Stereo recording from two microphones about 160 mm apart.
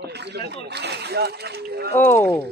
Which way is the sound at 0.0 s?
90° right.